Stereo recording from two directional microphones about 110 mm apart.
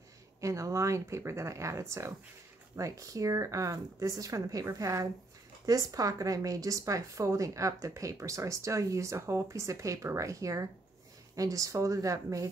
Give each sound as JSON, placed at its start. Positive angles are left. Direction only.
{"t": 0.4, "sound": "a woman's voice", "side_deg": -30}